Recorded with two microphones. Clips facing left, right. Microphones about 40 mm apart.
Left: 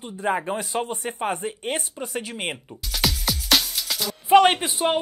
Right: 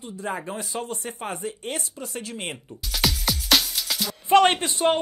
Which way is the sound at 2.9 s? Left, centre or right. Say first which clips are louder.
Even; centre.